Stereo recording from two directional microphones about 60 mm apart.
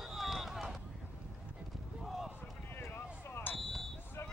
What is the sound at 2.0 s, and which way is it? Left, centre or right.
Basketball bounce, centre.